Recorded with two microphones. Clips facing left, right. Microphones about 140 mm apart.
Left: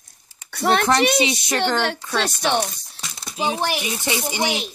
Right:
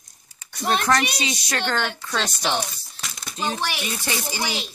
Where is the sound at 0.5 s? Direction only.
60° left (ahead or behind).